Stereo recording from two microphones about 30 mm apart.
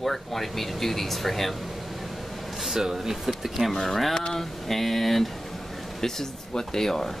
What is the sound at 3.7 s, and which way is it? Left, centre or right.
Speech, centre.